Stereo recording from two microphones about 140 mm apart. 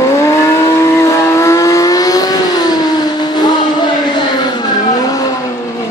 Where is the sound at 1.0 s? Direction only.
20° left (ahead or behind).